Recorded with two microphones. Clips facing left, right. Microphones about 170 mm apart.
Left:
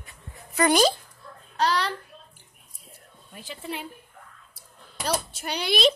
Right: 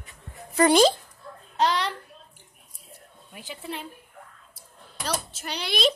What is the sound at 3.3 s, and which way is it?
Speech, 10° right (ahead or behind).